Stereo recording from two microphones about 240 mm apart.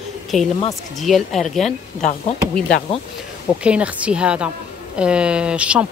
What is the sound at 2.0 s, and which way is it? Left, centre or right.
Speech, left.